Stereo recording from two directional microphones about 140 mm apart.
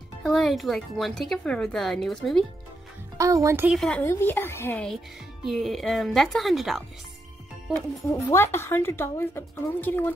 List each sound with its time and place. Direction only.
0.2 s speech: centre (ahead or behind)
3.2 s speech: 20° right (ahead or behind)
4.0 s a woman's voice: 15° left (ahead or behind)
5.4 s speech: centre (ahead or behind)
8.1 s a woman's voice: 20° left (ahead or behind)